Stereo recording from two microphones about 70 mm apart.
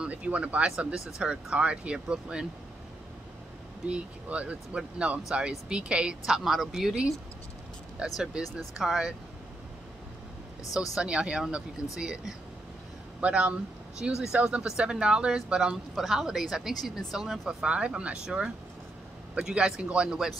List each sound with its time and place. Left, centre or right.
0.0 s speech: centre
3.8 s speech: centre
8.2 s a woman's voice: centre
10.6 s speech: left
11.0 s a woman's voice: centre
17.6 s speech: centre